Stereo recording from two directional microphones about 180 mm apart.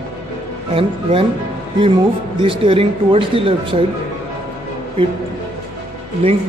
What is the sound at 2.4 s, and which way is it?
Speech, 30° right (ahead or behind).